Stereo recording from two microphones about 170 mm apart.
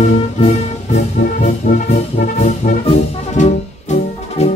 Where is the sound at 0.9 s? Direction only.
45° left (ahead or behind).